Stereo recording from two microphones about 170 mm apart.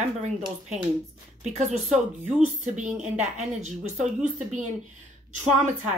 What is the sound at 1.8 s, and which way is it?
Speech, 5° right (ahead or behind).